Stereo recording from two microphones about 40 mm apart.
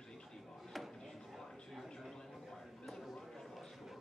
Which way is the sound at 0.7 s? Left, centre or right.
Centre.